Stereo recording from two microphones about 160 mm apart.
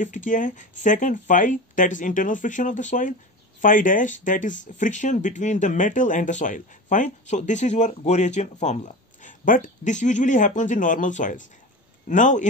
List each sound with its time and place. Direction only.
0.0 s speech: 50° left (ahead or behind)